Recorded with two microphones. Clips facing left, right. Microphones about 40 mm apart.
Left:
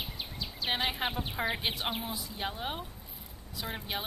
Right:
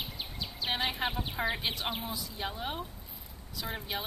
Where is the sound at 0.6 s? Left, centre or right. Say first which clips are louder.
Left 1 dB; left.